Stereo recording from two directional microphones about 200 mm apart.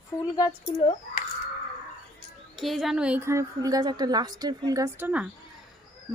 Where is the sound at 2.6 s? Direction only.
Centre (ahead or behind).